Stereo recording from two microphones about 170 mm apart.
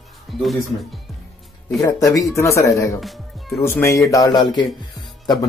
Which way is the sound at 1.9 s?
20° left (ahead or behind).